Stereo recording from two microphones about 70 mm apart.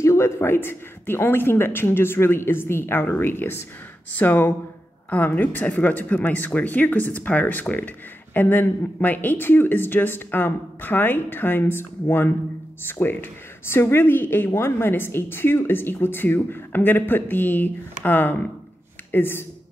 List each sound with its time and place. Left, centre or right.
0.0 s speech: left